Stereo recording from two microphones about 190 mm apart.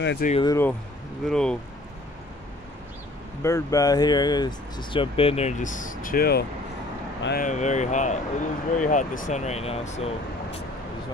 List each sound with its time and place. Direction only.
0.4 s speech: 20° left (ahead or behind)
1.2 s speech: 5° left (ahead or behind)
3.4 s speech: 20° left (ahead or behind); by 10.6 s 35° left (ahead or behind)